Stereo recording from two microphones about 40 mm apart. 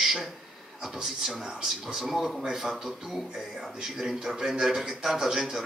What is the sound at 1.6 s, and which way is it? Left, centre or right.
A man's voice, centre.